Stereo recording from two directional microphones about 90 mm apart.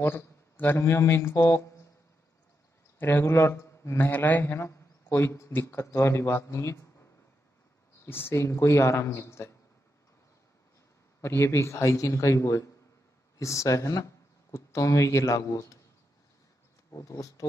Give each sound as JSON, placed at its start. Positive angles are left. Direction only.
{"t": 0.0, "sound": "a man's voice", "side_deg": 25}
{"t": 3.0, "sound": "a man's voice", "side_deg": 25}
{"t": 8.0, "sound": "speech", "side_deg": 25}
{"t": 11.1, "sound": "speech", "side_deg": 30}
{"t": 16.9, "sound": "speech", "side_deg": 40}